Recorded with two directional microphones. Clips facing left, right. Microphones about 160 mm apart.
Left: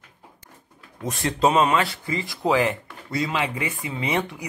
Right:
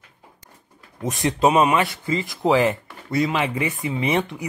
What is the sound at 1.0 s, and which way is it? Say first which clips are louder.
Speech: right 2 dB; 20° right (ahead or behind).